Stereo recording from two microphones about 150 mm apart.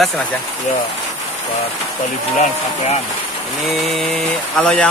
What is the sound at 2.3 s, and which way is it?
Speech, 55° left (ahead or behind).